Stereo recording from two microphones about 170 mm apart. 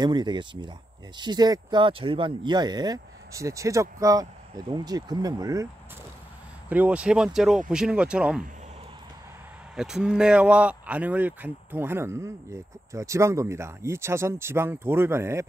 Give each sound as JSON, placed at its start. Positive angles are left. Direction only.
{"t": 0.0, "sound": "speech", "side_deg": -25}
{"t": 6.7, "sound": "speech", "side_deg": -10}
{"t": 9.8, "sound": "speech", "side_deg": -5}